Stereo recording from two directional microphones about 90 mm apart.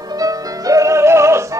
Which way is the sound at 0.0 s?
45° right (ahead or behind).